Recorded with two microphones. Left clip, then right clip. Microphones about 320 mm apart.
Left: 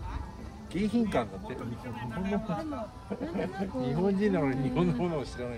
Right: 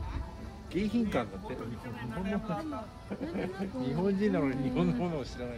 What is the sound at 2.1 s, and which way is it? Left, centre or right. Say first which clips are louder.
Speech: left 2 dB; centre.